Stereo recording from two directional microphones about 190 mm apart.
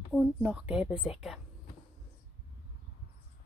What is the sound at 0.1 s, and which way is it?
Speech, 5° right (ahead or behind).